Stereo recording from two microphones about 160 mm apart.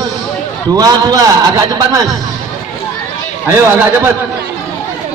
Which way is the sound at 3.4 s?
15° right (ahead or behind).